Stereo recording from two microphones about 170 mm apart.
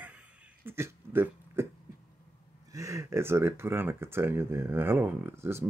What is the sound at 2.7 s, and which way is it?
Speech, 20° right (ahead or behind).